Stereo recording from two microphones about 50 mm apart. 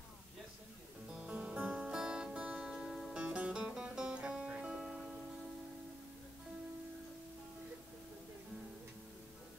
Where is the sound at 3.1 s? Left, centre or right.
Right.